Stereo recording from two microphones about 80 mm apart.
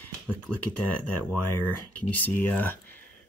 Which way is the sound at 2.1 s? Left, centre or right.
Left.